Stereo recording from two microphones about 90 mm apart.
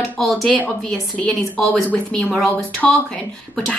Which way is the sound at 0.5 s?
15° left (ahead or behind).